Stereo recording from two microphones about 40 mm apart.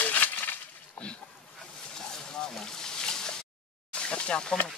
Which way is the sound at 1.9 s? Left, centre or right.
Centre.